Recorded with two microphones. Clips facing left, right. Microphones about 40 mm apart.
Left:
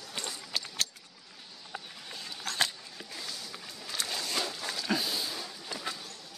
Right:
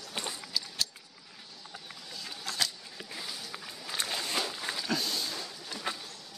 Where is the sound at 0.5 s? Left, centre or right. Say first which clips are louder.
Left 1 dB; left.